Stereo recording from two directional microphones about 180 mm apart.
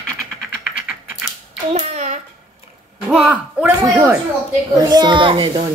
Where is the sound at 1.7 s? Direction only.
40° right (ahead or behind).